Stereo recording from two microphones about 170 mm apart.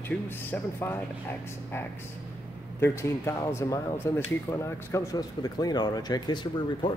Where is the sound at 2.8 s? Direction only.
15° left (ahead or behind).